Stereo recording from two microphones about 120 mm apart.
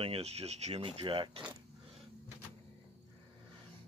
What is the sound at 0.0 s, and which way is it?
Speech, 55° right (ahead or behind).